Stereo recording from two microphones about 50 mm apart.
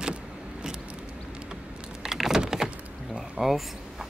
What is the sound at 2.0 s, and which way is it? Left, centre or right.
Vehicle, centre.